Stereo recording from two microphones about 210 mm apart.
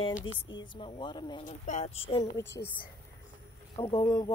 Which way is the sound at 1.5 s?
35° left (ahead or behind).